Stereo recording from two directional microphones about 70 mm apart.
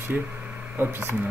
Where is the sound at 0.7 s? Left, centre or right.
Right.